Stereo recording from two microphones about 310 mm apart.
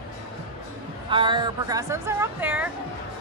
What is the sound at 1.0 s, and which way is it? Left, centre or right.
A woman's voice, centre.